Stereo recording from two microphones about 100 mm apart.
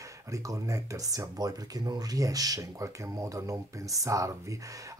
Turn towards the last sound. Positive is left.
turn(degrees=-30)  # may be behind; listen again after turning